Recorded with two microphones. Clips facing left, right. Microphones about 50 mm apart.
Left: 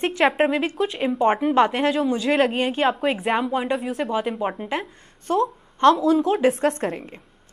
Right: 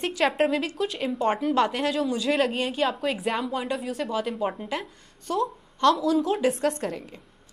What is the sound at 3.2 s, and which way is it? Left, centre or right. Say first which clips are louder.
Speech: left 5 dB; centre.